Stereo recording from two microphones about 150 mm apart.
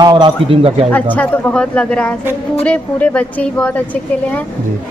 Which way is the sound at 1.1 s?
10° left (ahead or behind).